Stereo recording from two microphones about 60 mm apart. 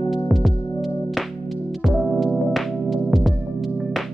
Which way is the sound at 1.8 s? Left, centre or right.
Centre.